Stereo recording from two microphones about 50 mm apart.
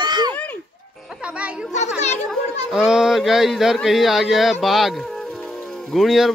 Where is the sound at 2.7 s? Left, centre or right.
Centre.